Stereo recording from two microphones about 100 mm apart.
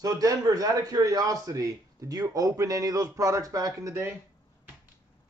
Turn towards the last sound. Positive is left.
turn(degrees=-30)  # may be behind; listen again after turning